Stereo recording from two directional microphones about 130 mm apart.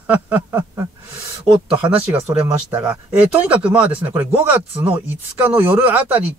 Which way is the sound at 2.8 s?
10° right (ahead or behind).